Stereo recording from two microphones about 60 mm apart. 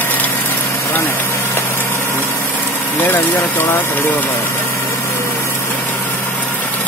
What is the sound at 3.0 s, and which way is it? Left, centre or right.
Speech, left.